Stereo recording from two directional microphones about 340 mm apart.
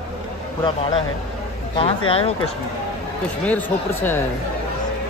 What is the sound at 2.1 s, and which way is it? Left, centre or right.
Speech, centre.